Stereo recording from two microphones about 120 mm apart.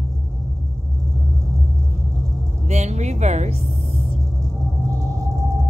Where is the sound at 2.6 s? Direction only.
70° right (ahead or behind).